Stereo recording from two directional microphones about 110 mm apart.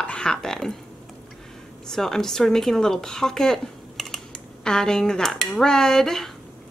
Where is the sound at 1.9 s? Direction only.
5° left (ahead or behind).